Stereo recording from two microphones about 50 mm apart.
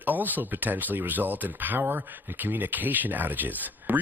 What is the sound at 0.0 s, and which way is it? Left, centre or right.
Speech, right.